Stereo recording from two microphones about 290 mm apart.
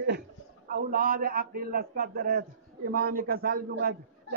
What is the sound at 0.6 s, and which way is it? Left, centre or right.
A man's voice, right.